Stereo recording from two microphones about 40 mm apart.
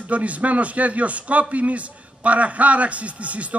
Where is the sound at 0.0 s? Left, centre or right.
Right.